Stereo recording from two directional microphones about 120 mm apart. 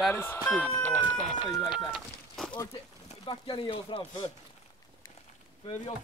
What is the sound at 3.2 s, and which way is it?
Speech, 40° left (ahead or behind).